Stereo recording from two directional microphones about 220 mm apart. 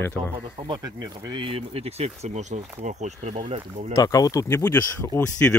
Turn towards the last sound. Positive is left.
turn(degrees=10)  # may be behind; listen again after turning